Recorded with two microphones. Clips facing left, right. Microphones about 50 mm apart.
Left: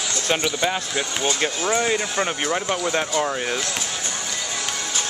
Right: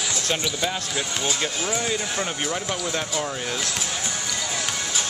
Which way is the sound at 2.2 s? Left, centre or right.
Centre.